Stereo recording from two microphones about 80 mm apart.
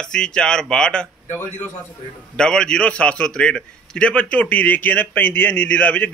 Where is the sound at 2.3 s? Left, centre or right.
Centre.